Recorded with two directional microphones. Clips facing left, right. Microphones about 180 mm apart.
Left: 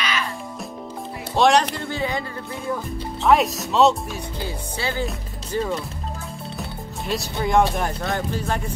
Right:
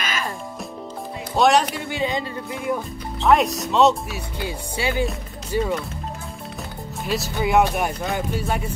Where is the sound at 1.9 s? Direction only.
20° right (ahead or behind).